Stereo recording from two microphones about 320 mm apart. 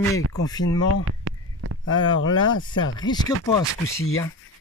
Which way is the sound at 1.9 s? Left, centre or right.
Centre.